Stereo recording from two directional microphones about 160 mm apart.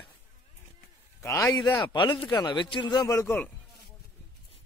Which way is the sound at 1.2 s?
20° left (ahead or behind).